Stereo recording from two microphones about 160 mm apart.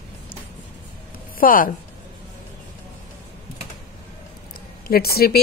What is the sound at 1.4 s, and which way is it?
Speech, 60° left (ahead or behind).